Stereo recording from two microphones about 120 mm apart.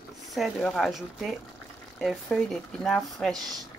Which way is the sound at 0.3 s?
Centre (ahead or behind).